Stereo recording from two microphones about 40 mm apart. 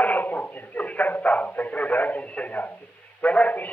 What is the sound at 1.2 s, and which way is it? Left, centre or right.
Radio, left.